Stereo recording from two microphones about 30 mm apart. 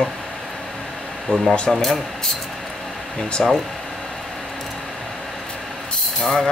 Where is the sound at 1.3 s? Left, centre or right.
Left.